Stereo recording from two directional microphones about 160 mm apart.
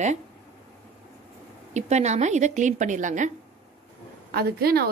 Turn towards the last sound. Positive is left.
turn(degrees=-75)  # may be behind; listen again after turning